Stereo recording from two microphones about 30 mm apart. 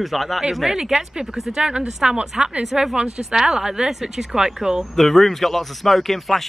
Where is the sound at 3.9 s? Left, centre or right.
Centre.